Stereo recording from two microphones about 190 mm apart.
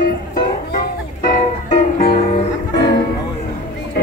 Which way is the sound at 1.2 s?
45° left (ahead or behind).